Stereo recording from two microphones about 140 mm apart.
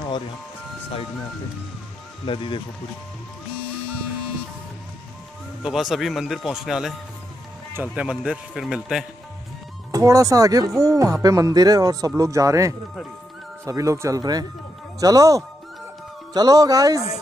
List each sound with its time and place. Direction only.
2.2 s speech: 40° left (ahead or behind)
5.6 s speech: 5° right (ahead or behind)
9.8 s speech: 25° right (ahead or behind)